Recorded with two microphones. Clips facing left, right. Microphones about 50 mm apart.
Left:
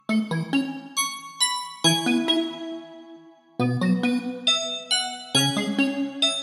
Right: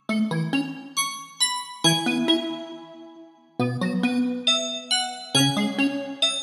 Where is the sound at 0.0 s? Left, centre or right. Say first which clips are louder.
Even; centre.